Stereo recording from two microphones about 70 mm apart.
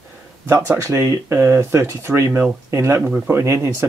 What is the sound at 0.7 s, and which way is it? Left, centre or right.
Speech, right.